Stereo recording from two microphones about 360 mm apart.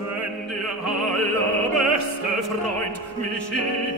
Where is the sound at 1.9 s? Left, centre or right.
Right.